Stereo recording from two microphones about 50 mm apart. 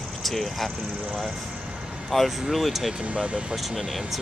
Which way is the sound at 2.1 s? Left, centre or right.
Centre.